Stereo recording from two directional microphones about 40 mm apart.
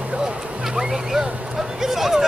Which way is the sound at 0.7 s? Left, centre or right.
Centre.